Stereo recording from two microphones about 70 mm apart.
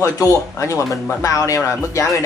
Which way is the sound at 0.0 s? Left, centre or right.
Left.